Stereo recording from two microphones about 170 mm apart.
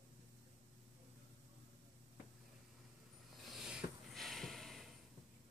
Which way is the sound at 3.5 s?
5° right (ahead or behind).